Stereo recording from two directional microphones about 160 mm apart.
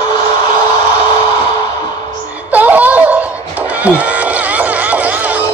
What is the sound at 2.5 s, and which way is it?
Music, 10° right (ahead or behind).